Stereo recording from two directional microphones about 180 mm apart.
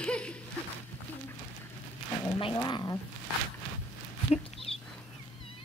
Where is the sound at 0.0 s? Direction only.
5° left (ahead or behind).